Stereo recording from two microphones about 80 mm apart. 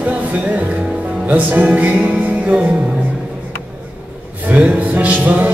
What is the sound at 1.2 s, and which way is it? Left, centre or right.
Music, centre.